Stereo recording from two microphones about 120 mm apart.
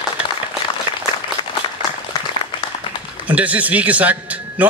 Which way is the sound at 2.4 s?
55° right (ahead or behind).